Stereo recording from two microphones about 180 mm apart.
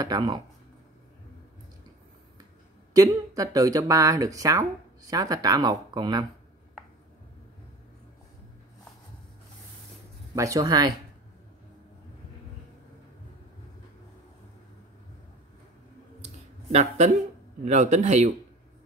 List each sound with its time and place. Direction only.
0.0 s speech: 20° right (ahead or behind)
2.9 s speech: 20° right (ahead or behind)
10.3 s speech: 20° right (ahead or behind)
16.7 s speech: 40° right (ahead or behind)